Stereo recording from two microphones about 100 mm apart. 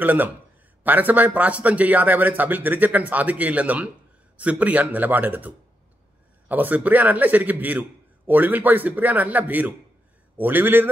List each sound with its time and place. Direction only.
0.0 s speech: 15° right (ahead or behind)
6.5 s a man's voice: 15° right (ahead or behind)